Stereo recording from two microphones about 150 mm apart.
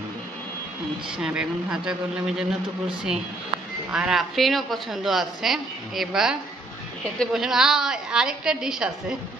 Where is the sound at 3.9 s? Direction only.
5° right (ahead or behind).